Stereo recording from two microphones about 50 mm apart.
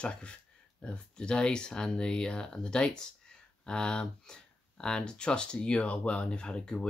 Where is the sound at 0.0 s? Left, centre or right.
Centre.